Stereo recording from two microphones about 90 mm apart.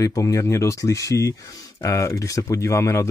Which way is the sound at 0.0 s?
40° left (ahead or behind).